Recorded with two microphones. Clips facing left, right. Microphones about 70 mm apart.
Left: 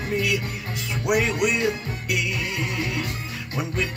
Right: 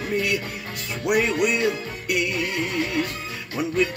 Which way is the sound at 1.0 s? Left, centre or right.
Centre.